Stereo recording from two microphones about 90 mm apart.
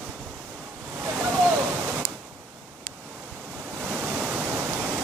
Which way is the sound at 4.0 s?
15° right (ahead or behind).